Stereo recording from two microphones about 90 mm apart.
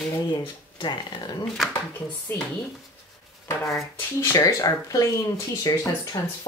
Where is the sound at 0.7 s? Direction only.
55° left (ahead or behind).